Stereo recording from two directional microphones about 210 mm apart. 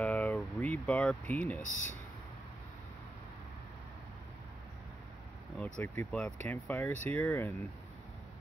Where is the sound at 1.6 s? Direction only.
40° left (ahead or behind).